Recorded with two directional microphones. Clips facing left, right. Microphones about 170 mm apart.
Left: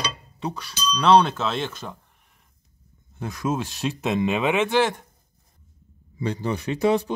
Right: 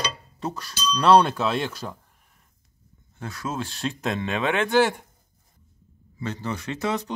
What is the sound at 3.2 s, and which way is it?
Speech, 15° left (ahead or behind).